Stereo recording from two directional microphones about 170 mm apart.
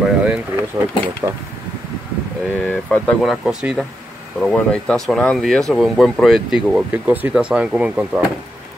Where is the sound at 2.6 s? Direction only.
10° left (ahead or behind).